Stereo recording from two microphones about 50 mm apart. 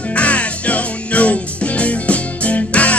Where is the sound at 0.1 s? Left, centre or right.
Left.